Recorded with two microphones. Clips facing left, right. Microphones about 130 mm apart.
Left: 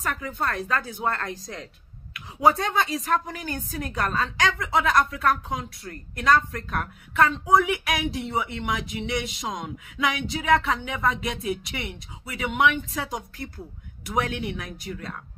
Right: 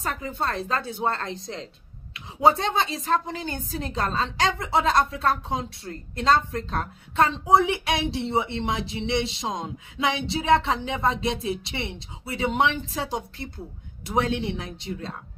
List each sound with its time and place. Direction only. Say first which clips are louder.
0.0 s a woman's voice: even; 25° right (ahead or behind)